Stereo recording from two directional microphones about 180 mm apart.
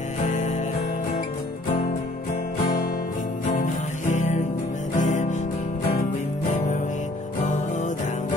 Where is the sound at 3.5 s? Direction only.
45° left (ahead or behind).